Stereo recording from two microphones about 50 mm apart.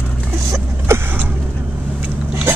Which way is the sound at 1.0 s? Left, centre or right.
Right.